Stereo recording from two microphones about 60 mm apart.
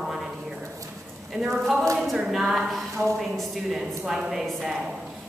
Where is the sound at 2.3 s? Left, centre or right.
Centre.